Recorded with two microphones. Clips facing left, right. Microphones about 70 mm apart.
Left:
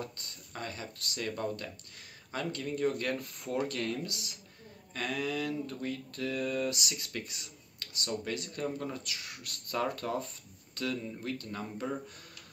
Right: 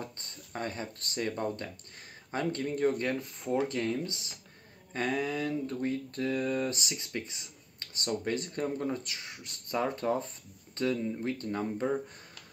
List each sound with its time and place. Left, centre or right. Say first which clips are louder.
0.0 s speech: even; right